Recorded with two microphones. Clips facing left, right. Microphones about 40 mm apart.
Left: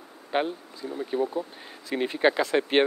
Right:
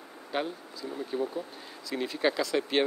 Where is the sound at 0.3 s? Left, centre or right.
Left.